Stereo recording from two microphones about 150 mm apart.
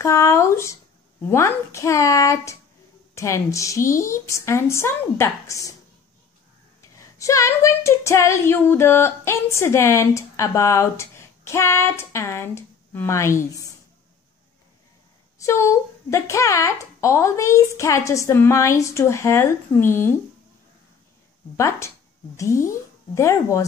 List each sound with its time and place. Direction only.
0.0 s speech: 20° left (ahead or behind)
6.8 s a sound: 20° left (ahead or behind)
15.4 s speech: 20° left (ahead or behind)
21.5 s speech: 20° left (ahead or behind)